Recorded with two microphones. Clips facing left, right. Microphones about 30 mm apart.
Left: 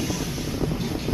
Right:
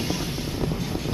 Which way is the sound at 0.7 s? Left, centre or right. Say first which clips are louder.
Left 1 dB; centre.